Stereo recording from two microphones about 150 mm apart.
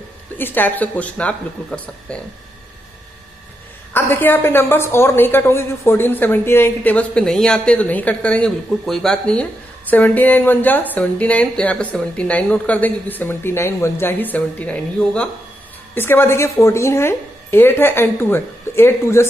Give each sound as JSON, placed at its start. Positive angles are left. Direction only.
{"t": 0.4, "sound": "a woman's voice", "side_deg": 15}
{"t": 3.9, "sound": "a woman's voice", "side_deg": 15}